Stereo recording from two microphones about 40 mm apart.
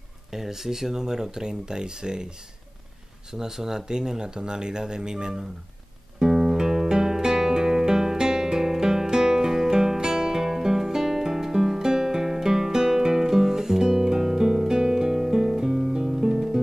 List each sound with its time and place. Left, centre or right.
0.3 s speech: centre
6.1 s music: centre